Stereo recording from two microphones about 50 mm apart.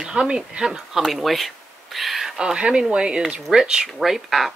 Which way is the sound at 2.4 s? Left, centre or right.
Centre.